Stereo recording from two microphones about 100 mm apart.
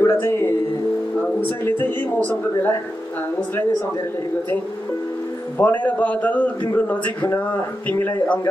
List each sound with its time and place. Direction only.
0.0 s music: 25° left (ahead or behind)
1.6 s speech: 20° left (ahead or behind)
5.6 s a man's voice: 15° left (ahead or behind)